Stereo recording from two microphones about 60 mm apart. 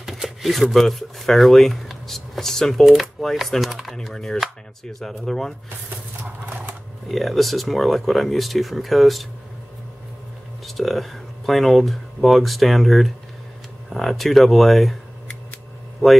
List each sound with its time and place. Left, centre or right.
0.0 s speech: centre
6.2 s a sound: right
7.1 s speech: centre
10.7 s speech: centre